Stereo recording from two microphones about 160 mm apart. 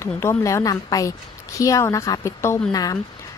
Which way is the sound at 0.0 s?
15° left (ahead or behind).